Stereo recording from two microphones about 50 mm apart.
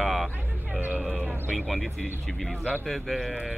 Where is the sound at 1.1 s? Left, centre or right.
Right.